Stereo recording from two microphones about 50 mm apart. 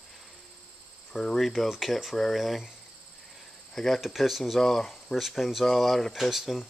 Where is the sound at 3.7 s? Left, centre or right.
Centre.